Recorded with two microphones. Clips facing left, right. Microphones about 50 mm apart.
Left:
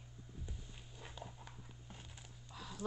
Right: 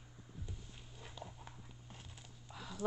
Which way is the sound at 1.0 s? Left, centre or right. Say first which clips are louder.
Even; centre.